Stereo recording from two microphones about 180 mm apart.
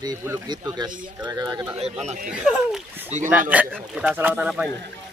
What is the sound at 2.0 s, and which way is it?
Speech, 40° right (ahead or behind).